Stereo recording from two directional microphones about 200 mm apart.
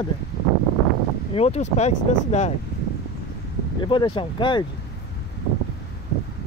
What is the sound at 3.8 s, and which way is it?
Speech, 25° left (ahead or behind).